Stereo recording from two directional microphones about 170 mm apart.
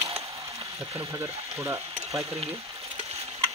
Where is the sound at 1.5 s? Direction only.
15° right (ahead or behind).